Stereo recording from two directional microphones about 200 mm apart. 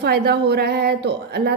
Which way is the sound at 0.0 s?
55° right (ahead or behind).